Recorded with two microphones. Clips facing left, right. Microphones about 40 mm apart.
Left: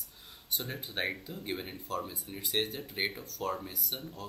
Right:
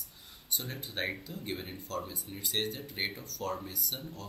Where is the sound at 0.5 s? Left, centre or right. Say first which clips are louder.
Left 1 dB; centre.